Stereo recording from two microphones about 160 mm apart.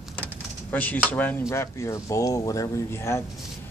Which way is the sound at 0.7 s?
10° left (ahead or behind).